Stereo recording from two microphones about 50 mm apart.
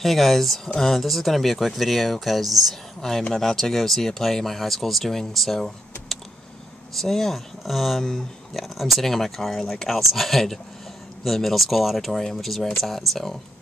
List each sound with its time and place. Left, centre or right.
0.0 s speech: centre